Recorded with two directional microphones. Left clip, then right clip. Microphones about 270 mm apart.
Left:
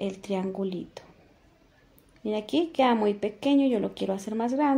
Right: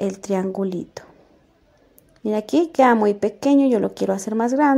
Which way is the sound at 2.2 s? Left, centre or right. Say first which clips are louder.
Right 7 dB; right.